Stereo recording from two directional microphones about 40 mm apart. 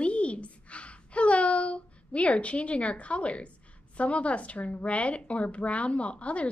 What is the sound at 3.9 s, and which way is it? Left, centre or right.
A woman's voice, left.